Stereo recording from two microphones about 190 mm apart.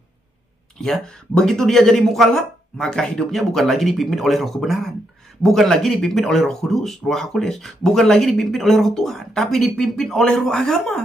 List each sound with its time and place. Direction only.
0.7 s speech: centre (ahead or behind)